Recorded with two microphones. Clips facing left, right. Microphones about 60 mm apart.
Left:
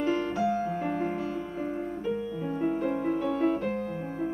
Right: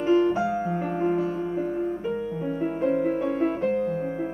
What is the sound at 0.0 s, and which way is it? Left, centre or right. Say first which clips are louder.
Music: right 6 dB; centre.